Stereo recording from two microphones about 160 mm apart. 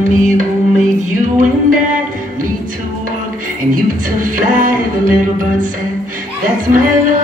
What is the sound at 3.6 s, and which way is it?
Music, 60° right (ahead or behind).